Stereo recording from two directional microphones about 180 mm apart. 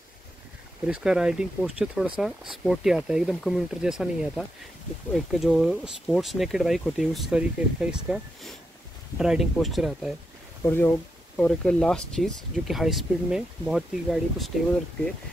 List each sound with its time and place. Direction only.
0.8 s speech: 5° right (ahead or behind)
5.3 s speech: centre (ahead or behind)
10.6 s speech: 15° left (ahead or behind)